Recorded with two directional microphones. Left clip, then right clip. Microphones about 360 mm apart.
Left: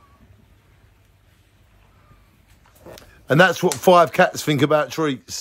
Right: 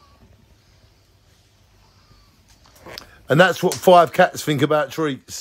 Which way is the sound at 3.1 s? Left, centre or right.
Centre.